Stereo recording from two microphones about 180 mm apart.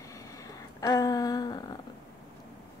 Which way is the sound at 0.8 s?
20° left (ahead or behind).